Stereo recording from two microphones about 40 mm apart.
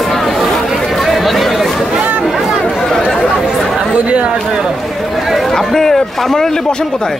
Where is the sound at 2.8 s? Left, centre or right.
Centre.